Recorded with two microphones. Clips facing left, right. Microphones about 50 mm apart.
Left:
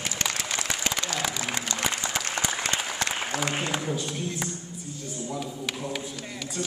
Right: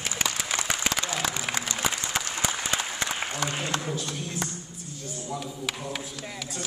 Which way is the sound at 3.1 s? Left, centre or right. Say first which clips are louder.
Left 1 dB; left.